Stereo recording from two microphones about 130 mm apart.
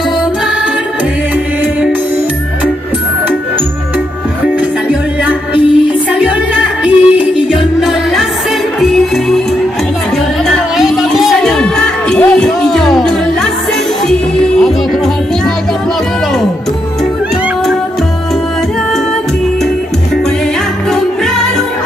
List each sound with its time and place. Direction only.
4.8 s music: 10° right (ahead or behind)
10.4 s music: centre (ahead or behind)